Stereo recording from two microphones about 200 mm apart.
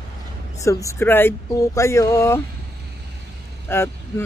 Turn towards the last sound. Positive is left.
turn(degrees=10)  # may be behind; listen again after turning